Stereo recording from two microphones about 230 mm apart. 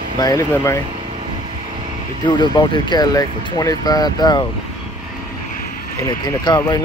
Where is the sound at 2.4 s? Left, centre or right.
Centre.